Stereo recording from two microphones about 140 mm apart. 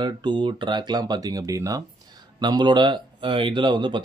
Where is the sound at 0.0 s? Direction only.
35° right (ahead or behind).